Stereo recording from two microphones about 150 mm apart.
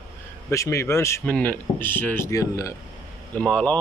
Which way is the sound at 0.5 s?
20° left (ahead or behind).